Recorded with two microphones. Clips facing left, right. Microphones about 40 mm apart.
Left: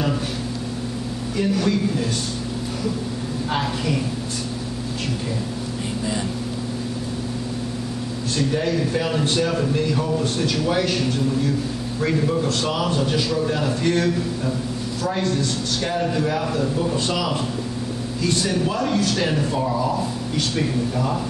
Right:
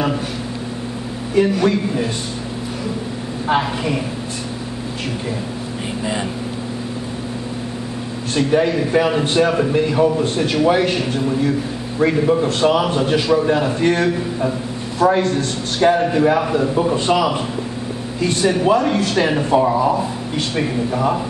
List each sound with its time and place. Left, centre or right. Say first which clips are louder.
1.5 s speech: right 3 dB; right
3.4 s speech: right 6 dB; right
8.4 s speech: right 6 dB; right